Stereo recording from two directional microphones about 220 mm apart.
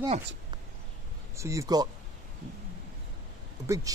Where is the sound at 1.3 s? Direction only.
15° right (ahead or behind).